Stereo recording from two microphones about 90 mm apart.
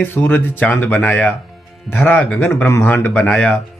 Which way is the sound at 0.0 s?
20° left (ahead or behind).